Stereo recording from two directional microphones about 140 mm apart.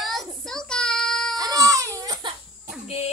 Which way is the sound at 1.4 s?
25° right (ahead or behind).